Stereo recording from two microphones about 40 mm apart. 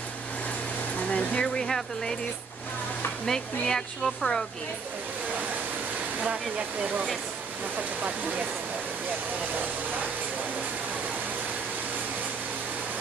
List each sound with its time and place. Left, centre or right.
0.9 s vehicle: left
3.3 s speech: centre
8.0 s speech: right